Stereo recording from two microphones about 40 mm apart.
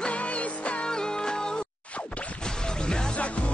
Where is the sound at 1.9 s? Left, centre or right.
Left.